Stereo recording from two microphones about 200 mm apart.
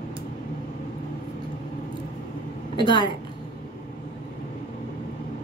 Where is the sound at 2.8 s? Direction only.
25° left (ahead or behind).